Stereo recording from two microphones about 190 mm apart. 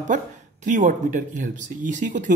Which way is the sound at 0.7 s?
40° right (ahead or behind).